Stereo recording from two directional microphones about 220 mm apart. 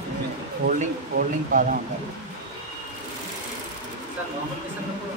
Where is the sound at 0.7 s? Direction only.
40° right (ahead or behind).